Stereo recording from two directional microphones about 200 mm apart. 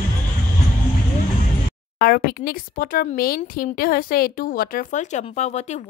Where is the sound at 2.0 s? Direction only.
50° left (ahead or behind).